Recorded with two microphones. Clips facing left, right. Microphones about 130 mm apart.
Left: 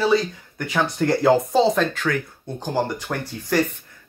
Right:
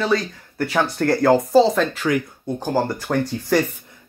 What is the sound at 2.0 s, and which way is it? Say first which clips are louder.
Speech: right 4 dB; 15° right (ahead or behind).